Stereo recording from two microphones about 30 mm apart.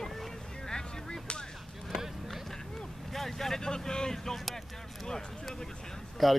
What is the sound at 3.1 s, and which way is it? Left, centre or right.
Vehicle, centre.